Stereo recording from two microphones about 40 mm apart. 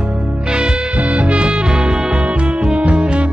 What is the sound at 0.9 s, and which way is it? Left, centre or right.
Music, right.